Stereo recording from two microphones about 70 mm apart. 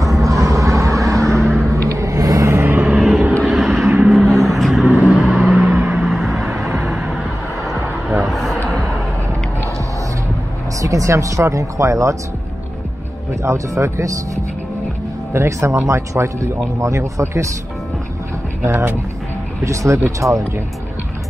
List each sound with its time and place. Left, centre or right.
0.1 s vehicle: right
1.8 s car: right
2.5 s vehicle: right
2.9 s vehicle: centre
5.9 s a sound: centre
8.3 s a sound: centre
10.8 s speech: right
13.3 s speech: right
18.6 s speech: right
19.6 s speech: right